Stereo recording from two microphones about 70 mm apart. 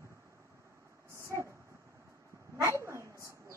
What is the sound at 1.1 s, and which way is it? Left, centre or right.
Vehicle, right.